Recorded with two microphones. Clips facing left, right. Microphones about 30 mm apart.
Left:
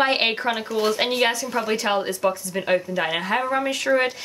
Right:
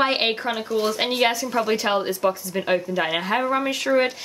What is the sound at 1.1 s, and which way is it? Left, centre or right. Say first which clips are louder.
A woman's voice: even; centre.